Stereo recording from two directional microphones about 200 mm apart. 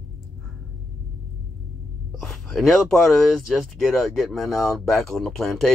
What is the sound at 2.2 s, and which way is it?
Speech, centre (ahead or behind).